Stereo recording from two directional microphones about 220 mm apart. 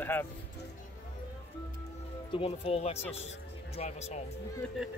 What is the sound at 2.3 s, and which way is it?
Speech, 25° left (ahead or behind).